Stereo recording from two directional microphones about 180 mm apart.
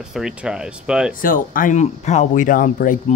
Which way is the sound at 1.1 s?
50° left (ahead or behind).